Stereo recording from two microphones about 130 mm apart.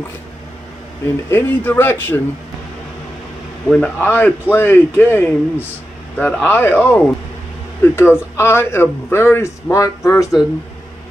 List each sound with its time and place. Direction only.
1.3 s speech: 15° left (ahead or behind)
3.8 s a man's voice: 15° left (ahead or behind)